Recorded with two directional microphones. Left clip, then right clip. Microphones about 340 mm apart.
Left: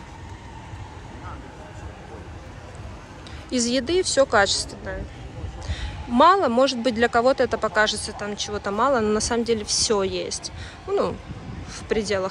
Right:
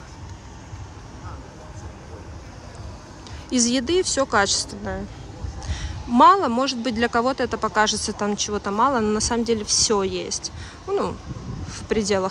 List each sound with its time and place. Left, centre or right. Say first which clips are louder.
3.4 s a woman's voice: right 1 dB; centre